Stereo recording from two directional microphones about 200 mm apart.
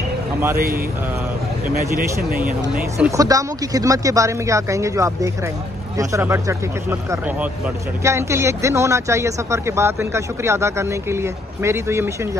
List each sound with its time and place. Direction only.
3.1 s speech: 15° right (ahead or behind)